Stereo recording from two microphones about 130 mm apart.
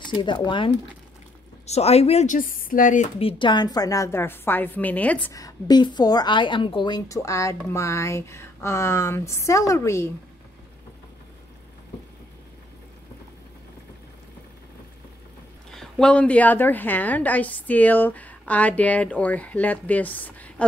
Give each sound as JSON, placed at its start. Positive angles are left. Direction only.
{"t": 0.0, "sound": "a woman's voice", "side_deg": 40}
{"t": 1.7, "sound": "speech", "side_deg": 55}
{"t": 2.2, "sound": "speech", "side_deg": 90}
{"t": 3.2, "sound": "speech", "side_deg": 45}
{"t": 5.3, "sound": "a woman's voice", "side_deg": 30}
{"t": 7.1, "sound": "speech", "side_deg": 25}
{"t": 15.7, "sound": "a woman's voice", "side_deg": 5}